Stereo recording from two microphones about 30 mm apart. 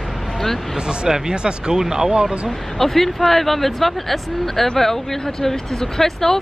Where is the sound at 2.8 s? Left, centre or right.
Centre.